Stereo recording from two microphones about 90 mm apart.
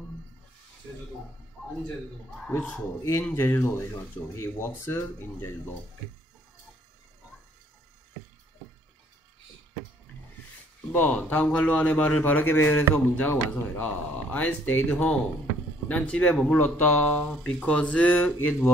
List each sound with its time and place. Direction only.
3.0 s speech: 30° left (ahead or behind)
10.9 s speech: 20° left (ahead or behind)